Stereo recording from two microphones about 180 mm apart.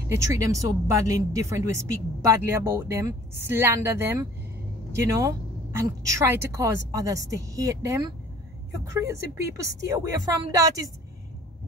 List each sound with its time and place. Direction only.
0.1 s a woman's voice: 15° right (ahead or behind)